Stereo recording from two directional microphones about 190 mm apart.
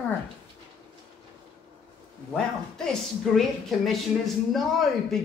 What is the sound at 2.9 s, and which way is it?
Speech, centre (ahead or behind).